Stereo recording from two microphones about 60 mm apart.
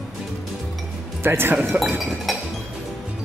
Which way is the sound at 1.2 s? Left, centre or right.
Right.